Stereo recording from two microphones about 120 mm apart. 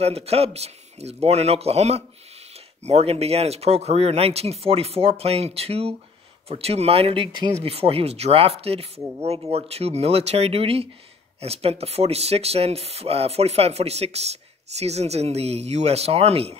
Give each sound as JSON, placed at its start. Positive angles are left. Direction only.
{"t": 0.0, "sound": "speech", "side_deg": -60}